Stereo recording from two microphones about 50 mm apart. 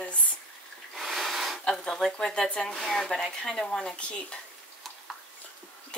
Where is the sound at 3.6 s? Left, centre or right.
Centre.